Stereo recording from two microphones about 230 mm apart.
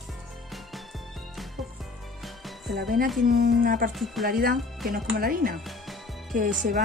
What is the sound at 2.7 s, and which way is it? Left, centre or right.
Speech, right.